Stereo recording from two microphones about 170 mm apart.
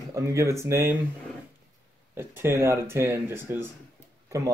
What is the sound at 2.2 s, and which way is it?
Speech, 15° right (ahead or behind).